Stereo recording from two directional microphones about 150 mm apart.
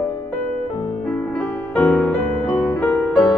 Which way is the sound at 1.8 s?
10° left (ahead or behind).